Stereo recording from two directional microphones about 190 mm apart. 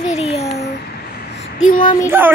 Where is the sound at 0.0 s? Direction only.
35° left (ahead or behind).